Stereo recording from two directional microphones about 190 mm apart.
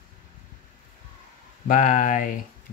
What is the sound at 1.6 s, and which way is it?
Speech, 45° left (ahead or behind).